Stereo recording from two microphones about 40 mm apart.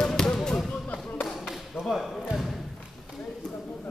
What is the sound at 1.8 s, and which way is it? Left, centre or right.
Basketball bounce, centre.